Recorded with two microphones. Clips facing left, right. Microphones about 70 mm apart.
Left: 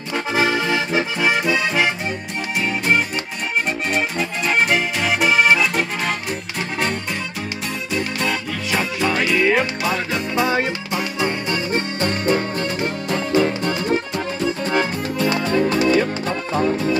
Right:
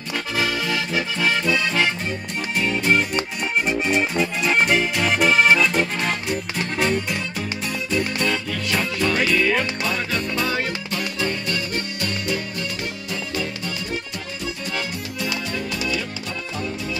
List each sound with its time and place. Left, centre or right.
0.3 s accordion: left
2.6 s music: centre
7.9 s music: centre; by 17.0 s left